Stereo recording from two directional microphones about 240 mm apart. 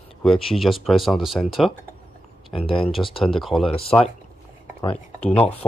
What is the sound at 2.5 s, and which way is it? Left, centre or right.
Speech, left.